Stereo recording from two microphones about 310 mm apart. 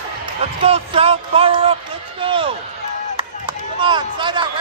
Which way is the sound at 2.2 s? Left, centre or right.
Centre.